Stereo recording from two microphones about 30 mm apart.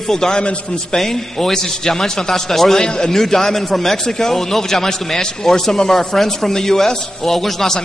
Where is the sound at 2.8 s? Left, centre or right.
Left.